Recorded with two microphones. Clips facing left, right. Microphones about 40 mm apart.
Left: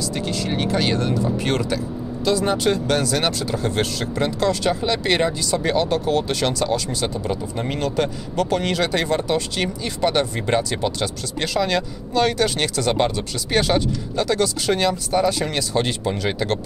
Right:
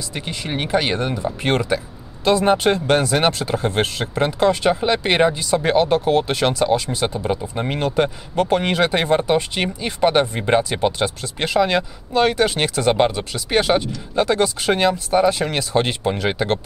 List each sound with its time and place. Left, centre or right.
0.1 s speech: right
2.2 s speech: right